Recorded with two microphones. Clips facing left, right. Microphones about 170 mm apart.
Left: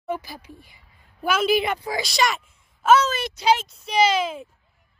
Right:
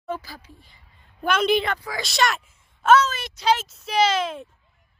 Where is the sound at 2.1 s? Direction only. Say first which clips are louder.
Right 2 dB; centre (ahead or behind).